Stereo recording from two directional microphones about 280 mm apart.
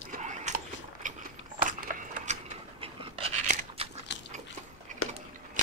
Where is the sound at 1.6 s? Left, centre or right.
Right.